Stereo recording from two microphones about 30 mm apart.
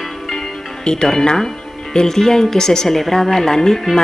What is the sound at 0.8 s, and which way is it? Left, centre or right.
Speech, left.